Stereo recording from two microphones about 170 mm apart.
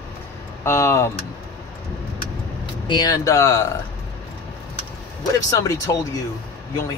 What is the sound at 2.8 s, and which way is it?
Speech, 25° left (ahead or behind).